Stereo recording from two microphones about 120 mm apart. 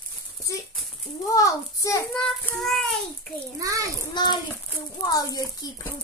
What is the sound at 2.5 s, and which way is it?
Speech, 5° left (ahead or behind).